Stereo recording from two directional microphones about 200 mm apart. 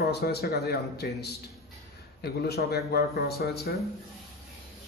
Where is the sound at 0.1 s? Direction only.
50° left (ahead or behind).